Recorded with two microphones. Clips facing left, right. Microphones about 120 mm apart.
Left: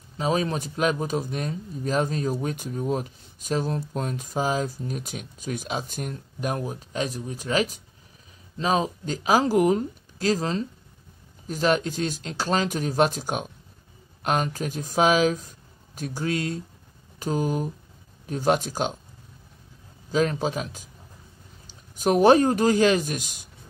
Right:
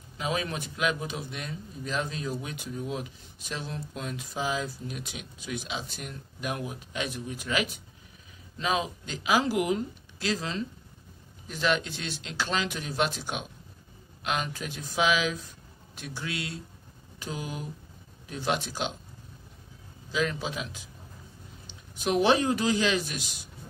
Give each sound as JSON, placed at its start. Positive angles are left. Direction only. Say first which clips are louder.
{"t": 0.2, "sound": "speech", "louder": "left 6 dB", "side_deg": 35}
{"t": 20.1, "sound": "a man's voice", "louder": "left 6 dB", "side_deg": 40}